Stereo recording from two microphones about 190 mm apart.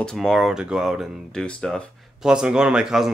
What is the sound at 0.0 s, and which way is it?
Speech, centre (ahead or behind).